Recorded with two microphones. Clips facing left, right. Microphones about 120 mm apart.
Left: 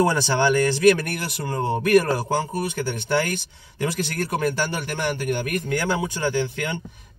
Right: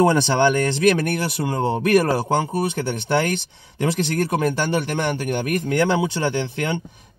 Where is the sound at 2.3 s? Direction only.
60° right (ahead or behind).